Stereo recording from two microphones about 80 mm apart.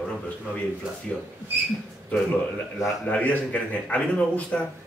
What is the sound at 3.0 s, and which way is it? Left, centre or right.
A man's voice, centre.